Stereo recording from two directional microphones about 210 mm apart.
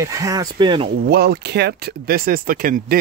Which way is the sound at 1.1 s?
50° right (ahead or behind).